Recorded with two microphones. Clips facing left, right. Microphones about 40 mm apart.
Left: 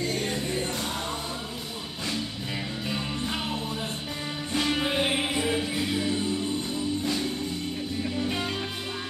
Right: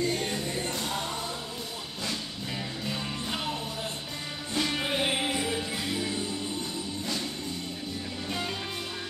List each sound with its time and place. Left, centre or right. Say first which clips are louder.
0.3 s music: left 2 dB; centre
2.8 s music: left 3 dB; centre
4.6 s music: left 3 dB; centre
8.3 s music: left 3 dB; centre